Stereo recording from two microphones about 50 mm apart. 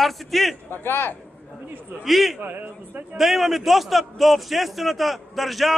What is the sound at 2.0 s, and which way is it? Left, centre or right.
Speech, centre.